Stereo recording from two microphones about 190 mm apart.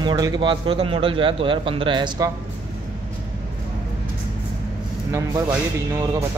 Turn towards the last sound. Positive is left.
turn(degrees=-15)  # may be behind; listen again after turning